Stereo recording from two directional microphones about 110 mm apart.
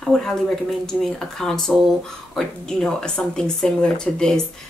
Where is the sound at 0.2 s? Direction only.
5° left (ahead or behind).